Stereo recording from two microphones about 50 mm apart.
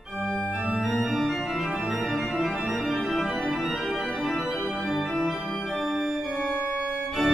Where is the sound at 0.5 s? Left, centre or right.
Right.